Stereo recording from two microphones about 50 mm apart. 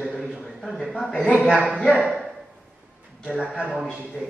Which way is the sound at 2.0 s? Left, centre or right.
Centre.